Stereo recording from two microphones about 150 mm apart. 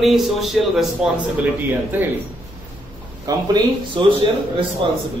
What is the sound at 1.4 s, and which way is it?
Speech, 10° right (ahead or behind).